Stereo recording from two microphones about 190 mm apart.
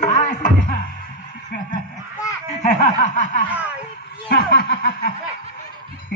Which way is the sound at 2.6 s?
40° left (ahead or behind).